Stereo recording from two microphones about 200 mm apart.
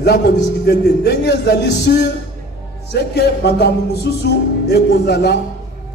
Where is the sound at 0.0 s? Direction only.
55° left (ahead or behind).